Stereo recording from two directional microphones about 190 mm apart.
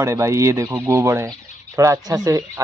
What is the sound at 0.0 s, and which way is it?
Speech, 15° right (ahead or behind).